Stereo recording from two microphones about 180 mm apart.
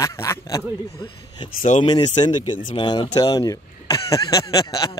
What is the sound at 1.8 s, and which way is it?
Speech, 25° left (ahead or behind).